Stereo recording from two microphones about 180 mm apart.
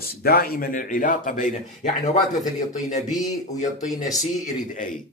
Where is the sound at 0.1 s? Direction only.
55° left (ahead or behind).